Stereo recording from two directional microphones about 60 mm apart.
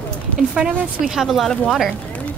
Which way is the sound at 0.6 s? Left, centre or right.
Centre.